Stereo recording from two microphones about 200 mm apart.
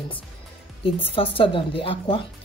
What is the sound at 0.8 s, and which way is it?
Speech, 25° left (ahead or behind).